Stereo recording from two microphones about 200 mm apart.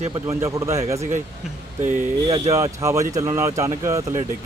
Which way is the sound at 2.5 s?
15° right (ahead or behind).